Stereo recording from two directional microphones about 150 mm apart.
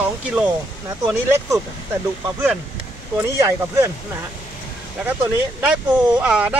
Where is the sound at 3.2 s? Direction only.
15° right (ahead or behind).